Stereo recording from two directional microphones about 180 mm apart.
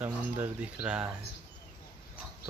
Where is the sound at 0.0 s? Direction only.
10° right (ahead or behind).